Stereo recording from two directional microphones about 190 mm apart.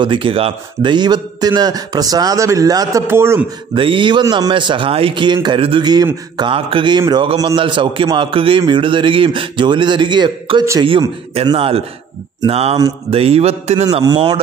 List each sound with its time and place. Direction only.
0.0 s speech: 25° right (ahead or behind)
3.7 s speech: 25° right (ahead or behind)
12.4 s mantra: 35° right (ahead or behind)
13.8 s speech: 20° right (ahead or behind)